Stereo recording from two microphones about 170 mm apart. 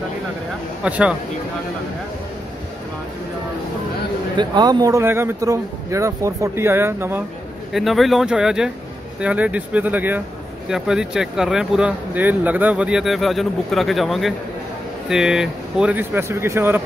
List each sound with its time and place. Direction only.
0.8 s speech: 5° right (ahead or behind)
4.4 s speech: 25° right (ahead or behind)
7.7 s speech: centre (ahead or behind)